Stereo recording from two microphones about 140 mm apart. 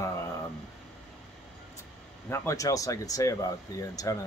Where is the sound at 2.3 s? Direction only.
25° left (ahead or behind).